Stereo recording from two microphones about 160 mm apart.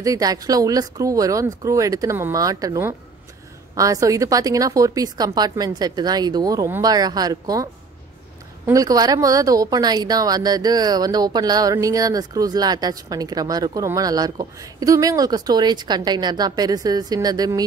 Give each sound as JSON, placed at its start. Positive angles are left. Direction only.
{"t": 0.0, "sound": "speech", "side_deg": -20}
{"t": 8.6, "sound": "speech", "side_deg": -20}